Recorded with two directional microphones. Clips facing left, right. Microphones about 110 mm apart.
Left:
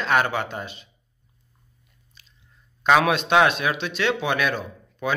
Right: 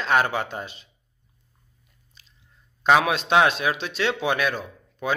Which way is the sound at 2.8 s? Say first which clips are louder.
Left 1 dB; 20° right (ahead or behind).